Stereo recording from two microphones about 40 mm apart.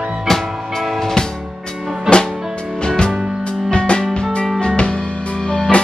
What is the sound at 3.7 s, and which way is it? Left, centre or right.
Music, left.